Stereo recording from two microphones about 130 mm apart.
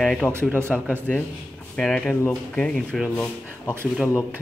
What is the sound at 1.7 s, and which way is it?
Speech, 5° left (ahead or behind).